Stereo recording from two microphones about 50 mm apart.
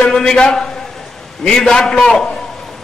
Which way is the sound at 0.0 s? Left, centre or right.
Centre.